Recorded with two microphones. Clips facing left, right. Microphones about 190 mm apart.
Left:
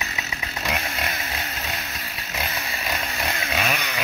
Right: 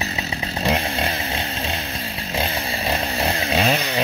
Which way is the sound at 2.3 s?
30° right (ahead or behind).